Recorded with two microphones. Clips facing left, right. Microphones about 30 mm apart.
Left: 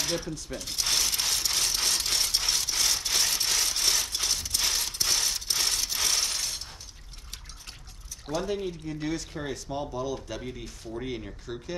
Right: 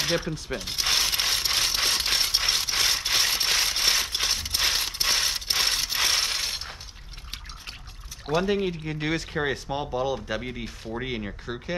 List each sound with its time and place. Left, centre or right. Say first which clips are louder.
0.0 s ratchet: right 4 dB; right
8.3 s speech: right 6 dB; right